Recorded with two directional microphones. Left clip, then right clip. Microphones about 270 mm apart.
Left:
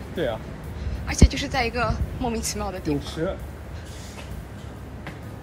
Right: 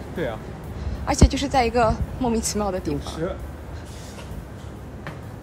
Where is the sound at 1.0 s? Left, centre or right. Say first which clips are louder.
Right 3 dB; centre.